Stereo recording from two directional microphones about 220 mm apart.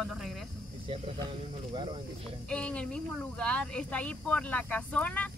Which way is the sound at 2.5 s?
5° left (ahead or behind).